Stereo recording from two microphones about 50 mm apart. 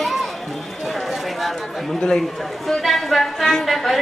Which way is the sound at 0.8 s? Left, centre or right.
Centre.